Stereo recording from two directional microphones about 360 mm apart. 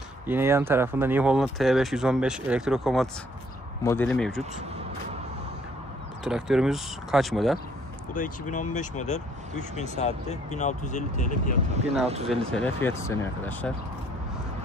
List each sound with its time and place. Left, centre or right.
0.3 s speech: centre
6.2 s speech: centre
8.1 s speech: left
11.7 s speech: centre
12.3 s speech: centre